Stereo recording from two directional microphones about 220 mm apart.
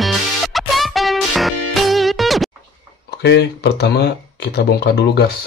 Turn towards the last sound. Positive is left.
turn(degrees=50)  # may be behind; listen again after turning